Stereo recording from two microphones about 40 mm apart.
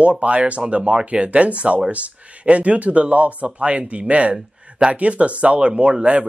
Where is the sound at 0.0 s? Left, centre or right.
Right.